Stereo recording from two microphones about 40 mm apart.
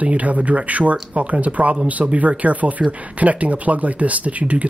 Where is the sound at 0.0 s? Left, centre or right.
Right.